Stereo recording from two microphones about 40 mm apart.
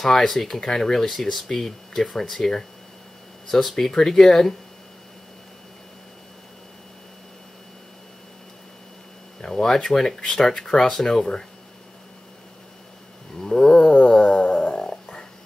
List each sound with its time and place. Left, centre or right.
0.0 s speech: centre
3.7 s speech: centre
9.4 s speech: centre
13.4 s speech: centre
14.2 s a sound: left